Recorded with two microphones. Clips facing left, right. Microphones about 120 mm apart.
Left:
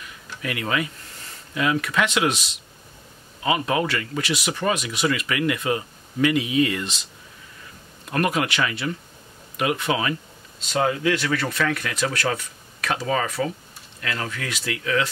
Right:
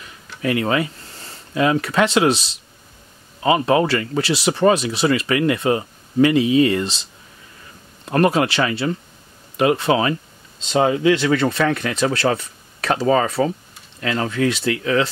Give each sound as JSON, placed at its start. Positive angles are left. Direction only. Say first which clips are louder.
{"t": 0.4, "sound": "speech", "louder": "right 7 dB", "side_deg": -30}